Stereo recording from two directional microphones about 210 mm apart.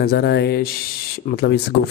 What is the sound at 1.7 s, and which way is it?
Speech, 70° left (ahead or behind).